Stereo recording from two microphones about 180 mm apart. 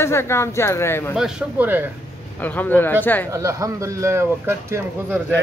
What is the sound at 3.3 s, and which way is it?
Speech, 15° right (ahead or behind).